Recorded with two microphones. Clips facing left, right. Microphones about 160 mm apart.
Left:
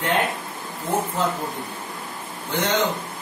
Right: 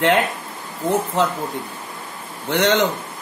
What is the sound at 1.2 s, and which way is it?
Speech, 80° right.